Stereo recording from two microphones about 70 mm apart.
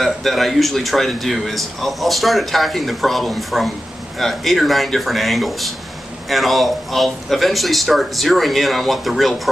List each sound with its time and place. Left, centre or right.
0.0 s speech: centre